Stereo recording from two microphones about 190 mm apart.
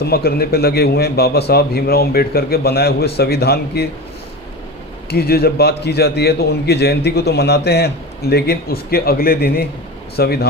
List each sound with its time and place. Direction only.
0.0 s a man's voice: 55° left (ahead or behind)
5.1 s a man's voice: 55° left (ahead or behind)